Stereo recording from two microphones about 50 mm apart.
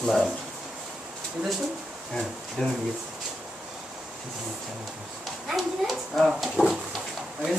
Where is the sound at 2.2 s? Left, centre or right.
Centre.